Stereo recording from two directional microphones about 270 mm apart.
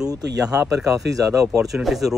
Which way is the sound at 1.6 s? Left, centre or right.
Centre.